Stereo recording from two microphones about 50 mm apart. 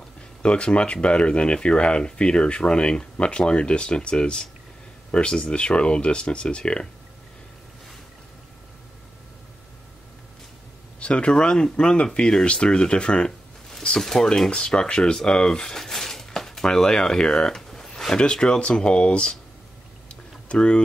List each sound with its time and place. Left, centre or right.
0.4 s speech: centre
11.0 s speech: left
13.9 s speech: centre
20.1 s a sound: left